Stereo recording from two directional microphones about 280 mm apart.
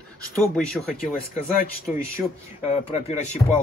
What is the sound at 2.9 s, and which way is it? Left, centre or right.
Speech, left.